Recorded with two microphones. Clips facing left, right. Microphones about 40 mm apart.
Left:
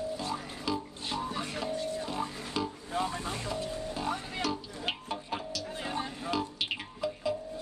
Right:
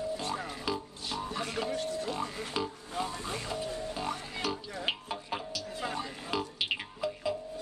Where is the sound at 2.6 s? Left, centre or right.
Centre.